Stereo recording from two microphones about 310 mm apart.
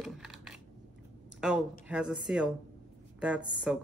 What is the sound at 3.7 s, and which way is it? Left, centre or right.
Speech, centre.